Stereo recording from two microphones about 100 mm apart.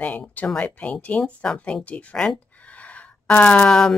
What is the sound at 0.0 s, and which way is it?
Speech, 15° left (ahead or behind).